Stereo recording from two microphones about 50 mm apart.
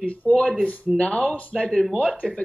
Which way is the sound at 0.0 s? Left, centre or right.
Left.